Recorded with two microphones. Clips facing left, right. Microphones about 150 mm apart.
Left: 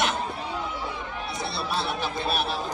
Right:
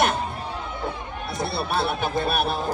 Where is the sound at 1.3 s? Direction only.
55° right (ahead or behind).